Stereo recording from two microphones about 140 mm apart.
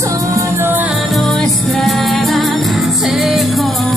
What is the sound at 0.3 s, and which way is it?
Music, 15° right (ahead or behind).